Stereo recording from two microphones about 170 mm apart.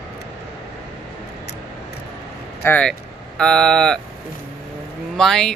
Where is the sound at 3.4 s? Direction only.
5° left (ahead or behind).